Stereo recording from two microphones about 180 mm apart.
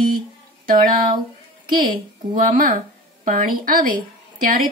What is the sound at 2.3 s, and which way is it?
A woman's voice, 50° right (ahead or behind).